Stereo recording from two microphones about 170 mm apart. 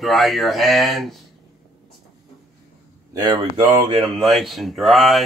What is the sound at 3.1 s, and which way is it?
Speech, 25° right (ahead or behind).